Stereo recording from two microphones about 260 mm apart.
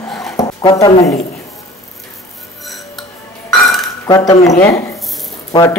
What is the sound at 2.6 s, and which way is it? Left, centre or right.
Music, centre.